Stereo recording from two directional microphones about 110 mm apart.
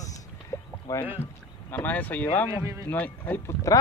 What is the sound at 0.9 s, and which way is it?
Speech, 30° left (ahead or behind).